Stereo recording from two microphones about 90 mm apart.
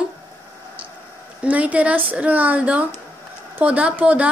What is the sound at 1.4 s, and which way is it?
A woman's voice, 15° right (ahead or behind).